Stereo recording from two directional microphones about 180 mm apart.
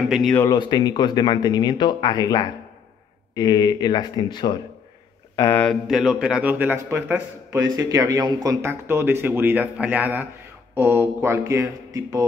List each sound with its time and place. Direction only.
0.1 s speech: centre (ahead or behind)
0.4 s speech: 20° left (ahead or behind); by 12.3 s 20° right (ahead or behind)